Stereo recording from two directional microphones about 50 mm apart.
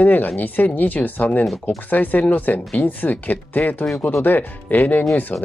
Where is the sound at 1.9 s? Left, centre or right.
Left.